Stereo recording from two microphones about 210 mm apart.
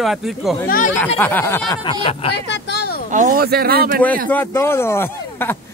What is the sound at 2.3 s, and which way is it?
Vehicle, 50° left (ahead or behind).